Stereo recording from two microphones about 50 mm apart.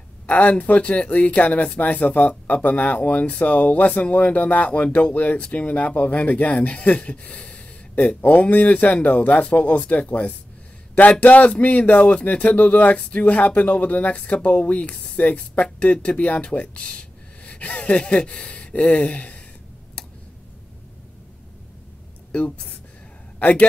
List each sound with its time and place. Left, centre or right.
0.3 s speech: left
5.1 s speech: left
23.4 s speech: left